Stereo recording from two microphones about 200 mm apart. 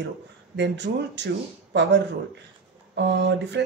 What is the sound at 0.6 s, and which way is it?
Speech, 60° right (ahead or behind).